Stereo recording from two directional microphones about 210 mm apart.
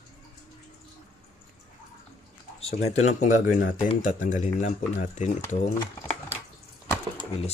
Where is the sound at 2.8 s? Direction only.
35° left (ahead or behind).